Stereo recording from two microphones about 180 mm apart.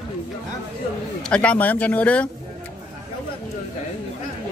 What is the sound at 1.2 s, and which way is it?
Speech, 5° left (ahead or behind).